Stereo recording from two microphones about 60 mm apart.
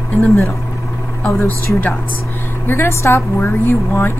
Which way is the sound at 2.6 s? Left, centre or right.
Left.